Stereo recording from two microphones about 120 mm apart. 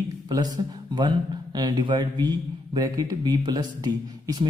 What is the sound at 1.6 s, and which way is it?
Speech, 35° right (ahead or behind).